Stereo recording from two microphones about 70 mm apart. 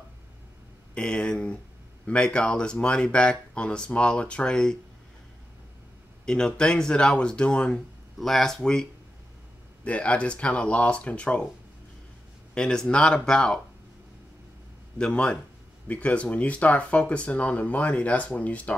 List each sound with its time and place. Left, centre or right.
0.9 s speech: centre
6.2 s speech: centre
9.8 s speech: centre
12.5 s speech: centre
15.0 s speech: centre